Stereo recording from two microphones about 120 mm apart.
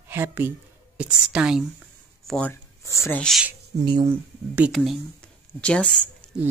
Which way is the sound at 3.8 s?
35° right (ahead or behind).